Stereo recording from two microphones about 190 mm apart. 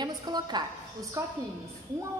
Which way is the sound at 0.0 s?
20° right (ahead or behind).